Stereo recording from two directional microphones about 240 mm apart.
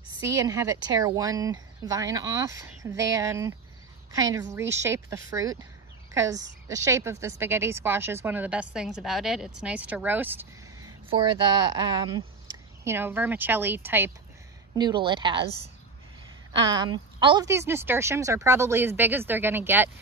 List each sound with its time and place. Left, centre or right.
0.4 s speech: centre
11.1 s speech: centre
14.8 s a woman's voice: centre
16.7 s speech: centre